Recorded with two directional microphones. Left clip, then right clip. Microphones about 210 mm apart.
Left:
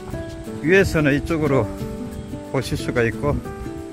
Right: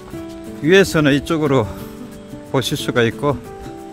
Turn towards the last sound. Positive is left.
turn(degrees=-25)  # may be behind; listen again after turning